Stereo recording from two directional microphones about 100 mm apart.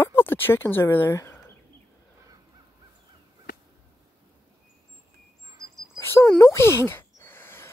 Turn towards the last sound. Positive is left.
turn(degrees=20)  # may be behind; listen again after turning